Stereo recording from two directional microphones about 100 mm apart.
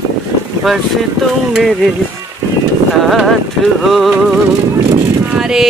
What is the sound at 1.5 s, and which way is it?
Speech, centre (ahead or behind).